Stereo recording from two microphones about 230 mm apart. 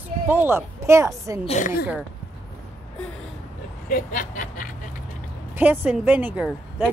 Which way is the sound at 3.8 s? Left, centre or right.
Left.